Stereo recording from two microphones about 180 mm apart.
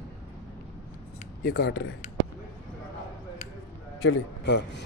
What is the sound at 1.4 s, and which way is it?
Speech, 60° left (ahead or behind).